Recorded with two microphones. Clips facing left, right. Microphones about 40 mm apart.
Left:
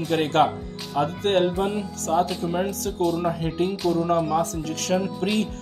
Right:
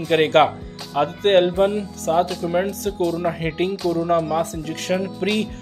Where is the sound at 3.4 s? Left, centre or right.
Right.